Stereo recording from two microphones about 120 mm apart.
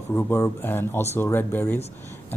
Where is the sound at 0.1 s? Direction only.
20° left (ahead or behind).